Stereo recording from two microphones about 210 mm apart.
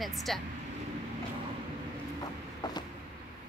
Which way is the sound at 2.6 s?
20° left (ahead or behind).